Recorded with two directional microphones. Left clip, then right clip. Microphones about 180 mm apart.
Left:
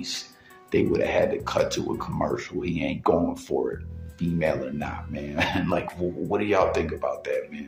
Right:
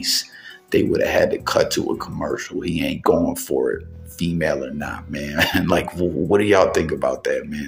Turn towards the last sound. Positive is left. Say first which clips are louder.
# right 6 dB
turn(degrees=-30)  # may be behind; listen again after turning